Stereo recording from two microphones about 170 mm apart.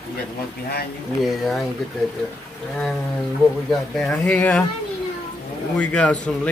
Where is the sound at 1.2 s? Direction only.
Centre (ahead or behind).